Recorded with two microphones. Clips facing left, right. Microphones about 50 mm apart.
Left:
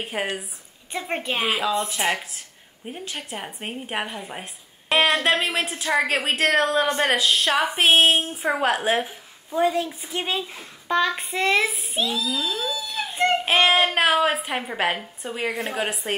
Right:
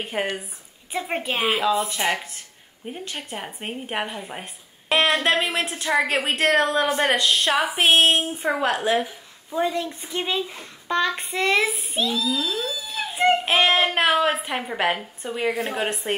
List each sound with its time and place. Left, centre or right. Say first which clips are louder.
0.0 s a woman's voice: right 1 dB; centre
8.5 s a woman's voice: left 1 dB; centre
9.5 s a woman's voice: left 2 dB; centre